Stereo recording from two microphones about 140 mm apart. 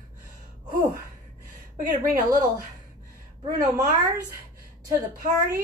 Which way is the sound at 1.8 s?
75° right (ahead or behind).